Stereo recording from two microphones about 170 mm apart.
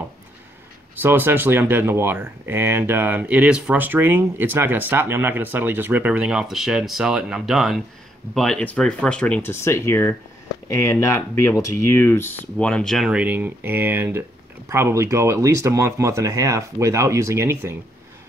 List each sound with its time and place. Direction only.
1.0 s speech: 10° right (ahead or behind)